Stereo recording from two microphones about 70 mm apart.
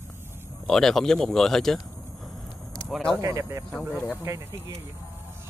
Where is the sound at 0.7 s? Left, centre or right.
Centre.